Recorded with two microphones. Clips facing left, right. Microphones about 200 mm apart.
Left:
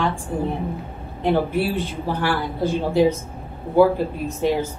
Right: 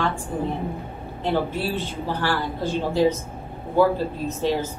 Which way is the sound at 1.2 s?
15° left (ahead or behind).